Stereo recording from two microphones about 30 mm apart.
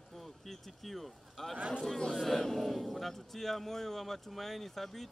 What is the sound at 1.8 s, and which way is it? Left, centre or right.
Speech, centre.